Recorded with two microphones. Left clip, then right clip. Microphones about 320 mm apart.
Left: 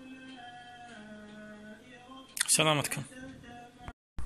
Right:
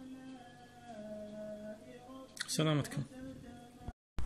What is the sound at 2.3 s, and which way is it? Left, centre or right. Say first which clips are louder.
Typing: left 9 dB; centre.